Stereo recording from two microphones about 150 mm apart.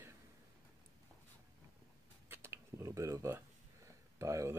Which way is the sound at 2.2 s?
15° right (ahead or behind).